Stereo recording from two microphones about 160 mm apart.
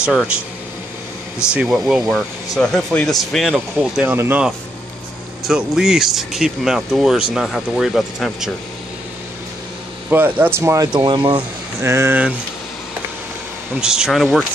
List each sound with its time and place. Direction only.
0.0 s speech: 5° right (ahead or behind)
1.5 s speech: 5° right (ahead or behind)
4.1 s speech: 10° right (ahead or behind)
10.0 s speech: 10° right (ahead or behind); by 11.4 s 30° right (ahead or behind)
11.8 s speech: 15° right (ahead or behind)
13.7 s speech: 5° right (ahead or behind)